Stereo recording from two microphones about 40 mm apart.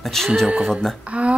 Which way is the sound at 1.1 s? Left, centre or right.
Right.